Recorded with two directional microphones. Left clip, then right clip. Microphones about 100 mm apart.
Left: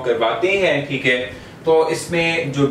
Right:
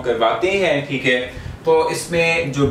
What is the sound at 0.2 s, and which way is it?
Speech, 15° right (ahead or behind).